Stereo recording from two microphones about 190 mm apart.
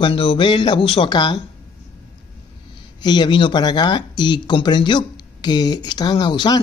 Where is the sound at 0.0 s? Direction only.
30° left (ahead or behind).